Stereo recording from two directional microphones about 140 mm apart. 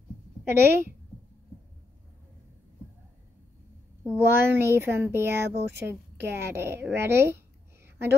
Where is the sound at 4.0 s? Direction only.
15° right (ahead or behind).